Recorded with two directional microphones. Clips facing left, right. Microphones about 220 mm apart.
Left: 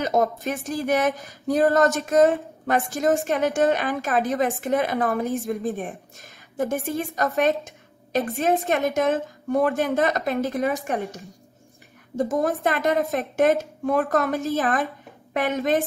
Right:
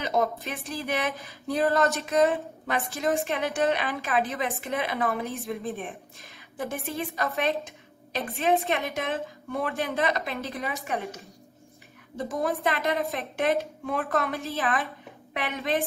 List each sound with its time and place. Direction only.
0.0 s a woman's voice: 45° left (ahead or behind)
12.2 s a woman's voice: 45° left (ahead or behind)